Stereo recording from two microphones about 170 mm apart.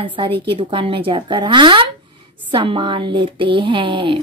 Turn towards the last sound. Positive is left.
turn(degrees=-30)  # may be behind; listen again after turning